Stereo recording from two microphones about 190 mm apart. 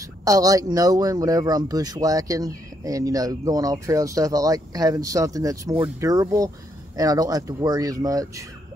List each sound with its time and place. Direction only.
0.2 s speech: 20° right (ahead or behind)